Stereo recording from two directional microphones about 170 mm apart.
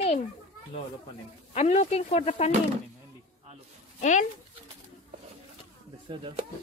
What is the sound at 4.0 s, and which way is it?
Speech, 45° left (ahead or behind).